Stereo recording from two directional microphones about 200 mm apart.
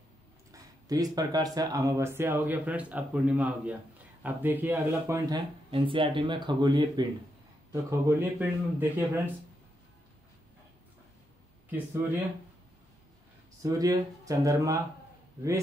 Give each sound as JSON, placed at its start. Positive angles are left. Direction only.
{"t": 0.5, "sound": "speech", "side_deg": -20}
{"t": 5.7, "sound": "speech", "side_deg": -25}
{"t": 13.6, "sound": "speech", "side_deg": -15}